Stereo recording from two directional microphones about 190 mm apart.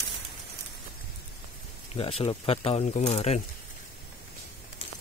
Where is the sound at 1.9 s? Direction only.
30° left (ahead or behind).